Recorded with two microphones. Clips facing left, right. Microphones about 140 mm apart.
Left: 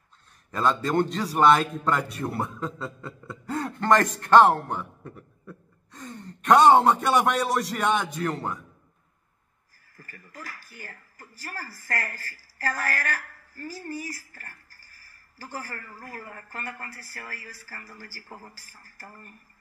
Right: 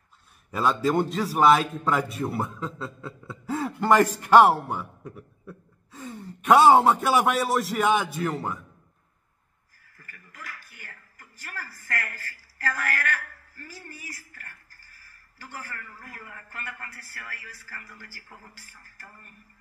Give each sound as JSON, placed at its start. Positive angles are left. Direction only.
{"t": 0.5, "sound": "a man's voice", "side_deg": -10}
{"t": 9.9, "sound": "speech", "side_deg": 35}